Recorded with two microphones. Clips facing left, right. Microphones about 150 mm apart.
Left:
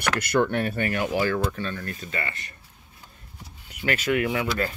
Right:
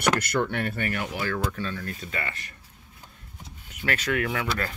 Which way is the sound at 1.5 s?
Centre (ahead or behind).